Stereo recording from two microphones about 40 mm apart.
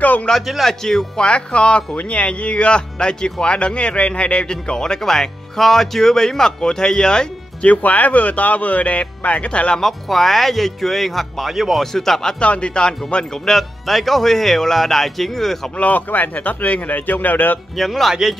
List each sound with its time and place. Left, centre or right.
0.0 s a sound: left
0.7 s speech: centre
7.6 s speech: left
9.8 s speech: centre
11.8 s speech: centre
12.4 s speech: left
13.6 s speech: centre
15.8 s speech: left
17.7 s speech: centre